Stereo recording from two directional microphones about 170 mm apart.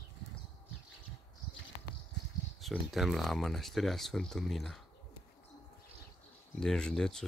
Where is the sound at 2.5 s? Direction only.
Centre (ahead or behind).